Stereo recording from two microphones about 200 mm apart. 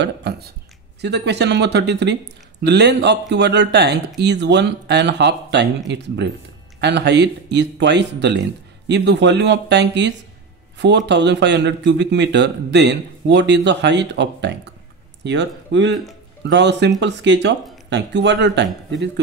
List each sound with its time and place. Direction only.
0.0 s speech: 60° right (ahead or behind)